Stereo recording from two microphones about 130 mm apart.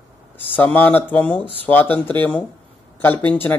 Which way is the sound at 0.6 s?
15° left (ahead or behind).